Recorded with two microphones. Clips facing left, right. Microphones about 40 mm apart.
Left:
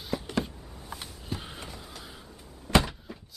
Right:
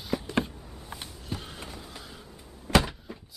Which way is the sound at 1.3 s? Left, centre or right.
Centre.